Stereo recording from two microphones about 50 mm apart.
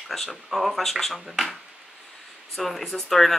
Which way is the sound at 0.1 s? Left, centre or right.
Centre.